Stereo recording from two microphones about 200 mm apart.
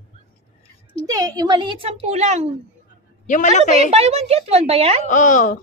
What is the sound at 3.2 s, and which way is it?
Speech, 40° left (ahead or behind).